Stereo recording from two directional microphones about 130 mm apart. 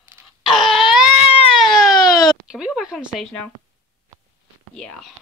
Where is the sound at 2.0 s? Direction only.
30° left (ahead or behind).